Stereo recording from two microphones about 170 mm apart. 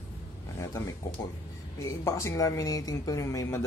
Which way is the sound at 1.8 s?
15° left (ahead or behind).